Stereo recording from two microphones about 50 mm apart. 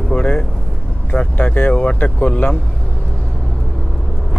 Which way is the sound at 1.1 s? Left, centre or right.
Left.